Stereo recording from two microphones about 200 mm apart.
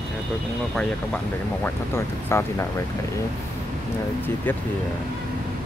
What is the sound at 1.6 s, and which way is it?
Speech, 15° left (ahead or behind).